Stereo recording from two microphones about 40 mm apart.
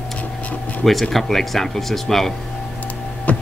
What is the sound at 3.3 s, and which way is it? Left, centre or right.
Music, left.